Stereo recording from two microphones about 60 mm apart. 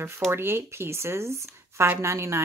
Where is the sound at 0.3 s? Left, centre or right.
Right.